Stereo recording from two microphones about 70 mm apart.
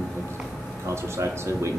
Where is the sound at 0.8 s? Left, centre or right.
Right.